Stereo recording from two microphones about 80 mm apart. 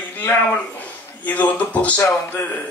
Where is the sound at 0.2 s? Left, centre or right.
Left.